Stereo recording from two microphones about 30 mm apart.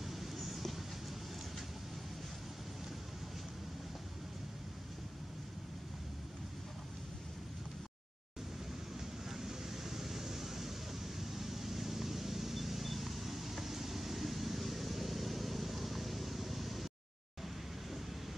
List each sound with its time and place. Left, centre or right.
0.0 s vehicle: centre
9.3 s vehicle: centre